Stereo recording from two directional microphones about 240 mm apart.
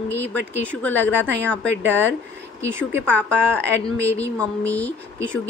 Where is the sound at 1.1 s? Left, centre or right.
Right.